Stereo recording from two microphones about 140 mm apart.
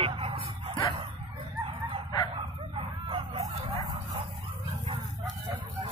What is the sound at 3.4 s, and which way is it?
Dog, 35° right (ahead or behind).